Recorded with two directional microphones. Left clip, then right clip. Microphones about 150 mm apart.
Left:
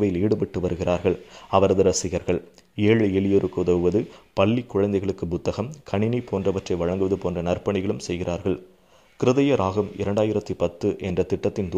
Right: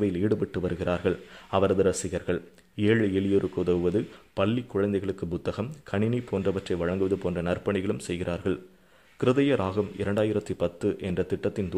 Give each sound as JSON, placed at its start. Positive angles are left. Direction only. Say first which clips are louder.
{"t": 0.0, "sound": "speech", "louder": "left 4 dB", "side_deg": 5}